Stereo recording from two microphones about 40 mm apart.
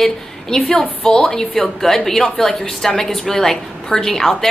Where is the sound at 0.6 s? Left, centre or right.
Centre.